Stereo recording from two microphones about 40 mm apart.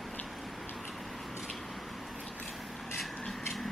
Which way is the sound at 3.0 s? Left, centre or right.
Centre.